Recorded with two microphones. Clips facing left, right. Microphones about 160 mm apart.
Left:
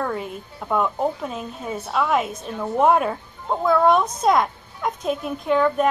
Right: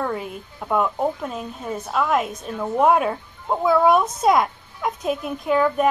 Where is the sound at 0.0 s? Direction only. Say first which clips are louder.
Even; centre (ahead or behind).